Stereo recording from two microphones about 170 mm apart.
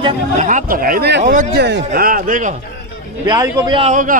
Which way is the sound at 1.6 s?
85° right.